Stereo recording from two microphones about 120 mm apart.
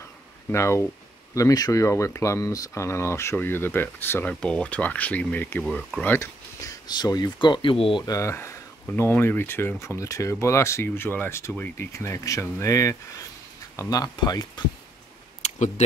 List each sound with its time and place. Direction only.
0.5 s speech: 20° left (ahead or behind)
6.1 s speech: 30° left (ahead or behind); by 8.0 s 50° left (ahead or behind)
8.0 s speech: 25° left (ahead or behind)
15.4 s a sound: 65° left (ahead or behind)